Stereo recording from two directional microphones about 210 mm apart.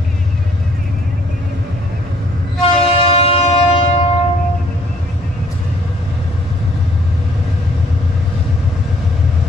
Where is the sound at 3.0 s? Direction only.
25° left (ahead or behind).